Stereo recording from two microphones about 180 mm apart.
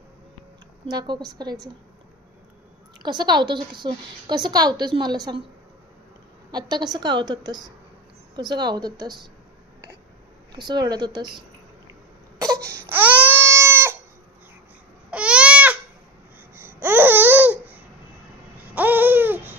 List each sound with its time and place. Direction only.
0.8 s a woman's voice: 25° right (ahead or behind)
3.0 s a woman's voice: 25° right (ahead or behind)
6.5 s a woman's voice: 25° right (ahead or behind)
10.5 s a woman's voice: 25° right (ahead or behind)
11.9 s cough: 20° right (ahead or behind)
12.6 s baby cry: 15° right (ahead or behind)
15.0 s babbling: 5° right (ahead or behind)
18.8 s babbling: 10° right (ahead or behind)